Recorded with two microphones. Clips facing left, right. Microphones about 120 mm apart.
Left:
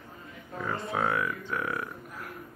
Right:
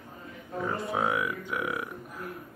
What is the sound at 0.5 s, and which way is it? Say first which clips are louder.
Speech: right 1 dB; 15° right (ahead or behind).